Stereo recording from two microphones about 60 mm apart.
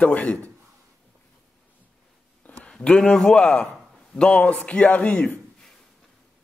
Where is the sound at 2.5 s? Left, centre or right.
Left.